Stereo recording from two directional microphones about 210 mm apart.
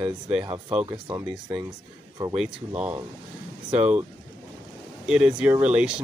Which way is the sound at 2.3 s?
5° right (ahead or behind).